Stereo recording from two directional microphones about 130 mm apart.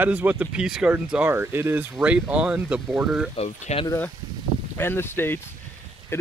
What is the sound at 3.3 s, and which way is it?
Speech, 55° left (ahead or behind).